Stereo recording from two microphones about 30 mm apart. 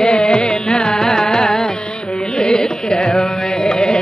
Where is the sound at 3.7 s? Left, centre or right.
Left.